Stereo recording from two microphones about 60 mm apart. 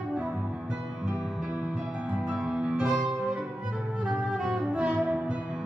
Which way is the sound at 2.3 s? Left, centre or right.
Centre.